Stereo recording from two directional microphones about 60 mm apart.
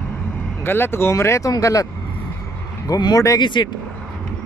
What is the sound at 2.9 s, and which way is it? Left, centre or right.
Speech, left.